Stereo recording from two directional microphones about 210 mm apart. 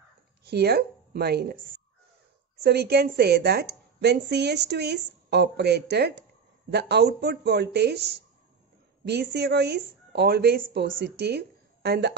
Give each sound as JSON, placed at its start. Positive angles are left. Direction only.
{"t": 0.4, "sound": "speech", "side_deg": -50}
{"t": 2.6, "sound": "a woman's voice", "side_deg": -50}